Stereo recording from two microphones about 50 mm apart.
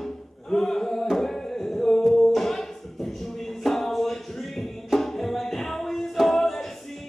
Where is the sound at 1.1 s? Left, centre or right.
Centre.